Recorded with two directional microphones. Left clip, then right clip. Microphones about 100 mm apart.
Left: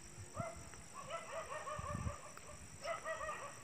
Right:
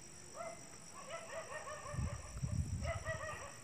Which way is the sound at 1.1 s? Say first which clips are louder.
Left 1 dB; 15° right (ahead or behind).